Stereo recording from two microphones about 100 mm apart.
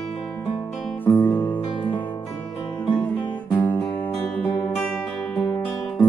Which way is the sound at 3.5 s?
15° left (ahead or behind).